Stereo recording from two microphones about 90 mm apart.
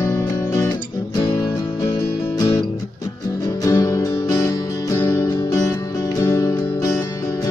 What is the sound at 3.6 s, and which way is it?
Music, 40° left (ahead or behind).